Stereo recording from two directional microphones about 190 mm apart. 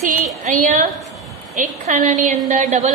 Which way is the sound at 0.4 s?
40° right (ahead or behind).